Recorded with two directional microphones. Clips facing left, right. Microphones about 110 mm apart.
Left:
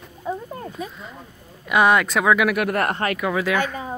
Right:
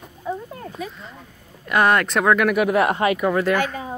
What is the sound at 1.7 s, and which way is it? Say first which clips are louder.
Speech: left 1 dB; 10° left (ahead or behind).